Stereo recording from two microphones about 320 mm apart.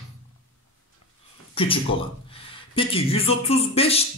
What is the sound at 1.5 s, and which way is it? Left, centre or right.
Speech, centre.